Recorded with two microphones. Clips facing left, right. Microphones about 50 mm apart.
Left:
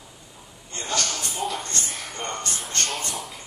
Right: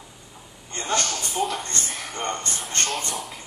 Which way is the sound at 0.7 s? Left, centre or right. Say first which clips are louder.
Right 2 dB; right.